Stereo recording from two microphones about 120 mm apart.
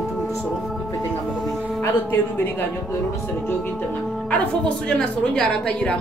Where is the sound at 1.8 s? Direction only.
15° left (ahead or behind).